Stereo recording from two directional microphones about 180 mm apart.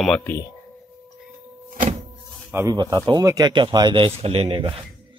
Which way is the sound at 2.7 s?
25° right (ahead or behind).